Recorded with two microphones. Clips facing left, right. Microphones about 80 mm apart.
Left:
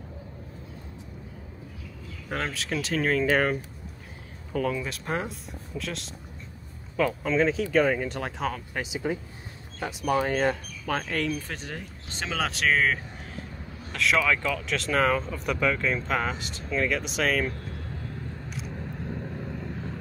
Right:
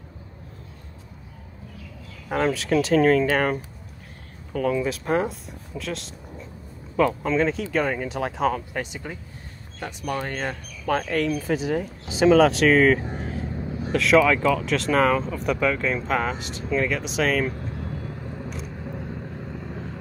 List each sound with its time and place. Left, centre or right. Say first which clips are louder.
2.2 s speech: right 8 dB; centre
17.6 s vehicle: right 5 dB; right
18.5 s vehicle: right 3 dB; centre